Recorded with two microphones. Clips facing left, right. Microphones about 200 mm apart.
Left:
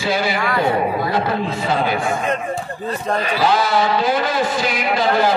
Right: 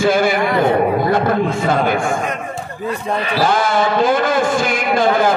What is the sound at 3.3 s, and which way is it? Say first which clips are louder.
A man's voice: right 2 dB; 50° right (ahead or behind).